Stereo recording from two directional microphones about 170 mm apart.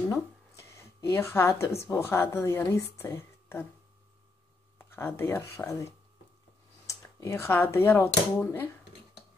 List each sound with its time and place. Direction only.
1.1 s a woman's voice: 15° left (ahead or behind)
4.7 s speech: 15° left (ahead or behind)